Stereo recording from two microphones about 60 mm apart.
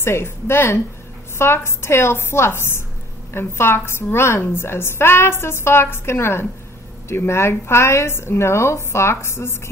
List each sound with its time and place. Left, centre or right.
0.0 s a woman's voice: left